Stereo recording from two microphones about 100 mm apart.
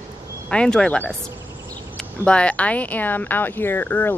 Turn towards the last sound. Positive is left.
turn(degrees=15)  # may be behind; listen again after turning